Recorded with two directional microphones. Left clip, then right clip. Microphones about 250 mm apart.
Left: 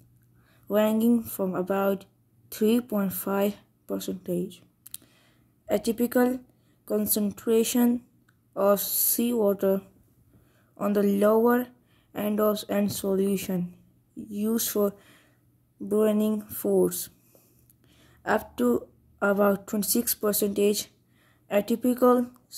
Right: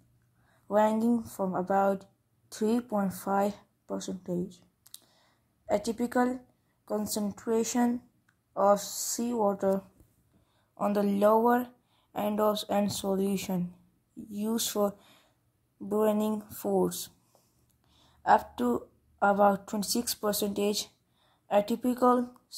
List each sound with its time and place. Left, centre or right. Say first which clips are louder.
0.7 s speech: left 2 dB; centre
8.7 s speech: left 3 dB; centre
9.1 s speech: left 4 dB; centre